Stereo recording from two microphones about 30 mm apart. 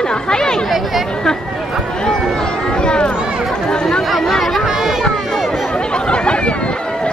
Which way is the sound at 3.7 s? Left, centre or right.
Left.